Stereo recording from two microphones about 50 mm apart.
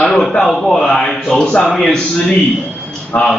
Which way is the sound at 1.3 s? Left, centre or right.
Centre.